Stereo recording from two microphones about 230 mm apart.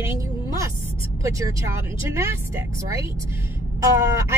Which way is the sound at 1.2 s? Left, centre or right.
Centre.